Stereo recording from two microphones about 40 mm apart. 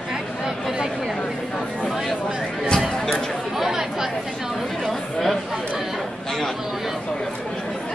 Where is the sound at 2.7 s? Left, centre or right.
Centre.